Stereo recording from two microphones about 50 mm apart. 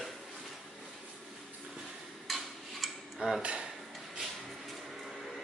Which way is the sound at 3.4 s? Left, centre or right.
Right.